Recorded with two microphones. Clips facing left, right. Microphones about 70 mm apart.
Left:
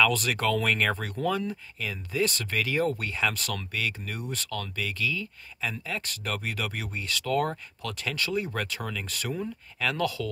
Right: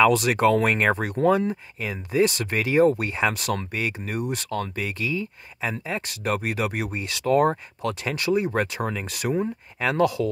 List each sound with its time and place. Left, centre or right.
0.0 s speech: centre